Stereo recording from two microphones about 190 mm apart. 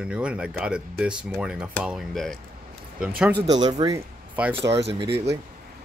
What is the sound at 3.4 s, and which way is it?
Speech, 20° right (ahead or behind).